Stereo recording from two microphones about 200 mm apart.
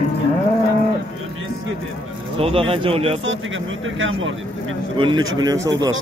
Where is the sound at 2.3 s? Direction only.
30° right (ahead or behind).